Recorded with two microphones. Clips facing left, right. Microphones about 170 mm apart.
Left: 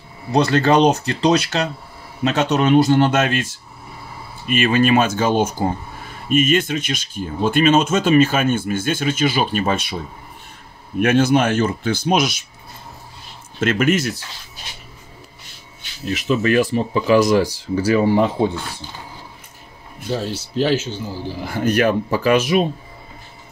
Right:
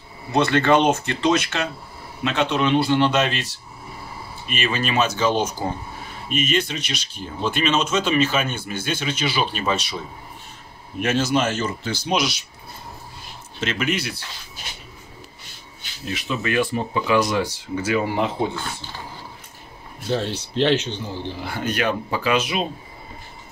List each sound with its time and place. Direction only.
0.3 s speech: 40° left (ahead or behind)
11.0 s speech: 55° left (ahead or behind)
13.6 s speech: 50° left (ahead or behind)
16.1 s speech: 40° left (ahead or behind)
20.1 s speech: 5° left (ahead or behind)
21.4 s speech: 45° left (ahead or behind)